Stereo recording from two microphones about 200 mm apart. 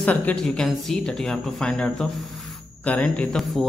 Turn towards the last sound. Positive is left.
turn(degrees=5)  # may be behind; listen again after turning